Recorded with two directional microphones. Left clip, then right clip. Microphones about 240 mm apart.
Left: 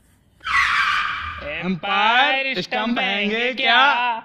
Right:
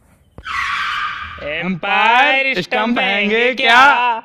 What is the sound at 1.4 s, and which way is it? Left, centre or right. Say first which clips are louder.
Speech: right 5 dB; right.